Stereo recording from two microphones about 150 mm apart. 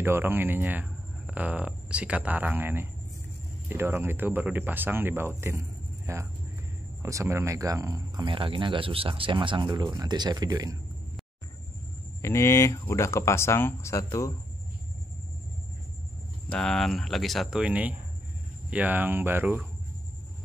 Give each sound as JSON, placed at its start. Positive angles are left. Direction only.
{"t": 0.0, "sound": "speech", "side_deg": -15}
{"t": 12.2, "sound": "speech", "side_deg": 20}
{"t": 16.4, "sound": "speech", "side_deg": 5}